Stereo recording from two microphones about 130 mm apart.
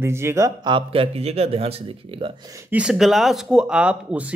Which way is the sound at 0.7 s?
40° right (ahead or behind).